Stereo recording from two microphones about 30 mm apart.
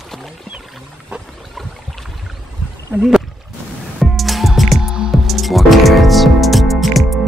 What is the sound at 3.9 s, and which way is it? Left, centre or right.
Music, centre.